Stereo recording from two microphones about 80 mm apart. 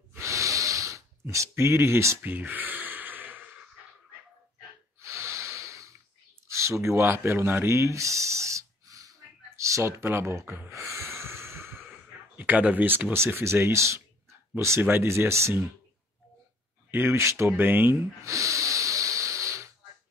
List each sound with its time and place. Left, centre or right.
0.1 s gasp: right
2.2 s gasp: right
5.0 s snort: right
6.4 s a sound: right
12.4 s speech: centre; by 15.7 s right
16.9 s speech: right
17.5 s speech: right
18.2 s music: right